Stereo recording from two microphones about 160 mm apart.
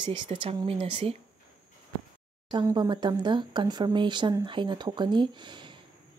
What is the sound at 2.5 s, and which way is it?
Speech, 25° right (ahead or behind).